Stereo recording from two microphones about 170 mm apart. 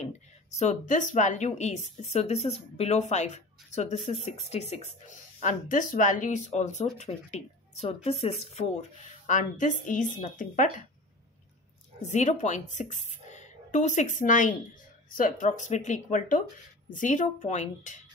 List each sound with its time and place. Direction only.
0.6 s a woman's voice: 45° left (ahead or behind)
12.0 s a woman's voice: 45° left (ahead or behind)